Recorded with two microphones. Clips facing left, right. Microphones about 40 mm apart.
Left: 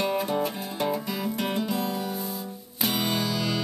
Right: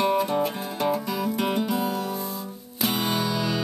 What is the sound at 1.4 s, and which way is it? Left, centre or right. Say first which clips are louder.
Music: right 3 dB; centre.